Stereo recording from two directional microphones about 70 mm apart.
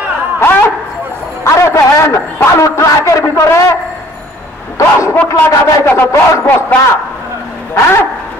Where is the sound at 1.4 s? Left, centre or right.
Left.